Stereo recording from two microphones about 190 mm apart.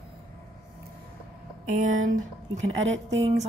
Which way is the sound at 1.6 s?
45° right (ahead or behind).